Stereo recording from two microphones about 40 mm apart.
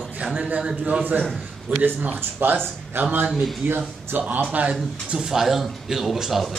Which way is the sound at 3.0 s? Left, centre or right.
Right.